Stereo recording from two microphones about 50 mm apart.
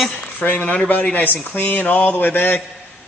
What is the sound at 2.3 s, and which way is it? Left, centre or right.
Speech, left.